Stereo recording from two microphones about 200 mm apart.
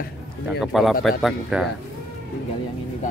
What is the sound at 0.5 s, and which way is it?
Speech, centre (ahead or behind).